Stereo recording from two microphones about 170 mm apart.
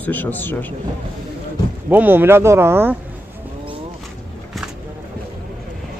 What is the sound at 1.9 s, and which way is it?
Speech, 10° right (ahead or behind).